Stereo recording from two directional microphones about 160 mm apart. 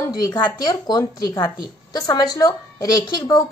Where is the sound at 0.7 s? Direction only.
25° left (ahead or behind).